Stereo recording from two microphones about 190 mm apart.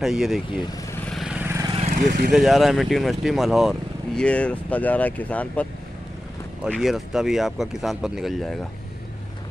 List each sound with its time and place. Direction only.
0.0 s speech: centre (ahead or behind)
1.0 s vehicle: centre (ahead or behind)
1.7 s vehicle: 35° right (ahead or behind)
2.0 s speech: 50° right (ahead or behind)
2.3 s speech: centre (ahead or behind)
6.7 s speech: centre (ahead or behind)